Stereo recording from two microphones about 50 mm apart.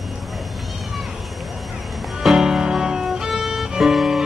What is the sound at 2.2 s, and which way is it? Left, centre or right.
Music, centre.